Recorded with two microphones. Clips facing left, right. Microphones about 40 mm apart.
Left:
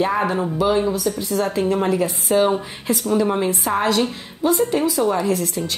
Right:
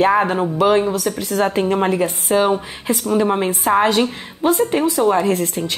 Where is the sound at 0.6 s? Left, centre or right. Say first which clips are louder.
Right 4 dB; right.